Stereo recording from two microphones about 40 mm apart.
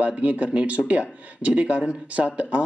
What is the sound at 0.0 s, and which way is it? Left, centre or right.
Speech, right.